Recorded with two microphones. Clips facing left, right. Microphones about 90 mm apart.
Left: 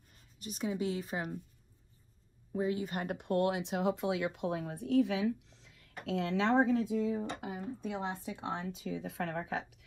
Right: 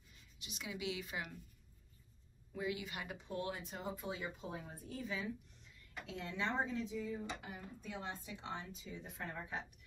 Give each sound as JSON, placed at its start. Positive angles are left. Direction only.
{"t": 0.1, "sound": "speech", "side_deg": 40}
{"t": 2.5, "sound": "speech", "side_deg": 40}
{"t": 7.2, "sound": "speech", "side_deg": 50}
{"t": 7.9, "sound": "speech", "side_deg": 80}
{"t": 8.4, "sound": "speech", "side_deg": 65}